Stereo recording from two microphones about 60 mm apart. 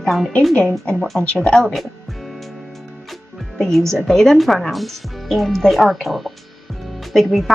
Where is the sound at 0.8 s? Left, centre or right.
Centre.